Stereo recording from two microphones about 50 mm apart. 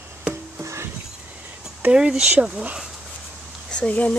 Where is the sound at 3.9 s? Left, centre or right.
Left.